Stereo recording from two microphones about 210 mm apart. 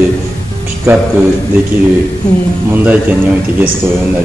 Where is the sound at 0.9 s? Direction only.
10° right (ahead or behind).